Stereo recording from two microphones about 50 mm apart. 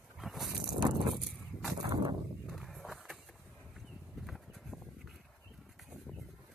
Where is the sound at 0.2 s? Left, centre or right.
Centre.